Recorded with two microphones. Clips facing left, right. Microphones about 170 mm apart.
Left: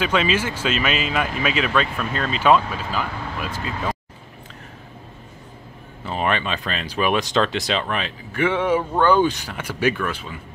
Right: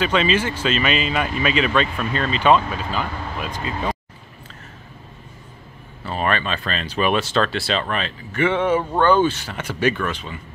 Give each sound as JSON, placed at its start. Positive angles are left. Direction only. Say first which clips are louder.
{"t": 0.0, "sound": "speech", "louder": "right 1 dB", "side_deg": 10}
{"t": 6.0, "sound": "speech", "louder": "even", "side_deg": 15}